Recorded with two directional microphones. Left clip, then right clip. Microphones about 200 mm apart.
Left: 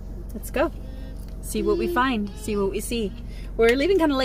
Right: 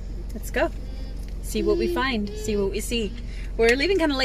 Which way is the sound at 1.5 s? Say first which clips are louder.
Even; 30° left (ahead or behind).